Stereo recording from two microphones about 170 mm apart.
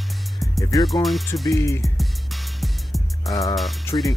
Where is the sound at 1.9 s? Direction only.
Centre (ahead or behind).